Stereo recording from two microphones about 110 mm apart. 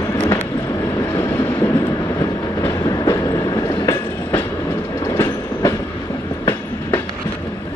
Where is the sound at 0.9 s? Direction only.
35° left (ahead or behind).